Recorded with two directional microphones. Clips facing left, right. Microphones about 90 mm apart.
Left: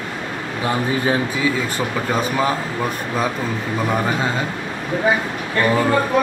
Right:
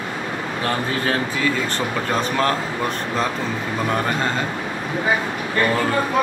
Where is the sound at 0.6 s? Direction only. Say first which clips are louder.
Left 3 dB; 15° left (ahead or behind).